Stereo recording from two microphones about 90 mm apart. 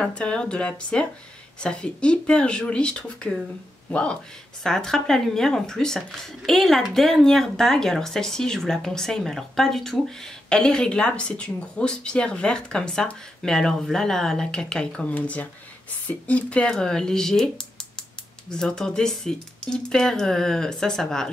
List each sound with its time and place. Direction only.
0.0 s speech: 10° left (ahead or behind)